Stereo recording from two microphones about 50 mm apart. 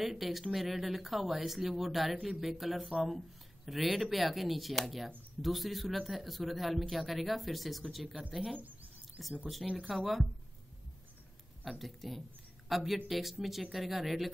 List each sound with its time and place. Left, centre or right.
0.0 s speech: centre
8.5 s a sound: right
9.8 s speech: centre
11.8 s speech: centre